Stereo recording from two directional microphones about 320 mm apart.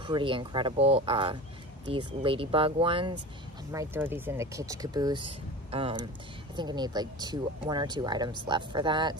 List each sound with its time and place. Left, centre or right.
0.0 s speech: centre